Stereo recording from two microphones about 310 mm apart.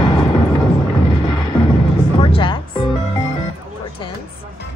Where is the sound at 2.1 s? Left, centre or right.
Centre.